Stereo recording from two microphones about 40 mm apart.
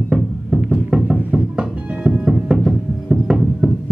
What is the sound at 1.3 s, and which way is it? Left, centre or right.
Music, right.